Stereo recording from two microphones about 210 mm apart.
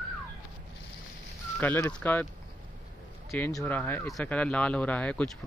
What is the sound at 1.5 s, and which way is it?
Speech, 10° left (ahead or behind).